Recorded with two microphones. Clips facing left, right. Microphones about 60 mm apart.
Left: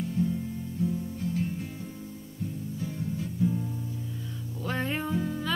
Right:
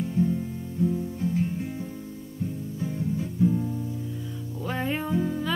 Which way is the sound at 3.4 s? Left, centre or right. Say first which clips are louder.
Right 5 dB; right.